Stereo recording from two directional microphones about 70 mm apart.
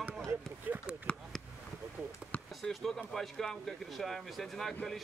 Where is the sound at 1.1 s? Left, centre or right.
Centre.